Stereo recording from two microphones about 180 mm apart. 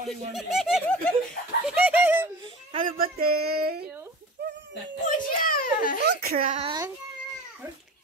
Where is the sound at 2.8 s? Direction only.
55° right (ahead or behind).